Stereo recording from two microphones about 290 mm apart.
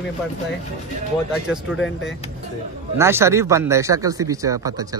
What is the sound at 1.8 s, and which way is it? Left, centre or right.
Speech, left.